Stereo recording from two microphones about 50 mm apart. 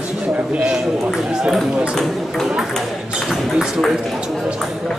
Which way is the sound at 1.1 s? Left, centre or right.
Centre.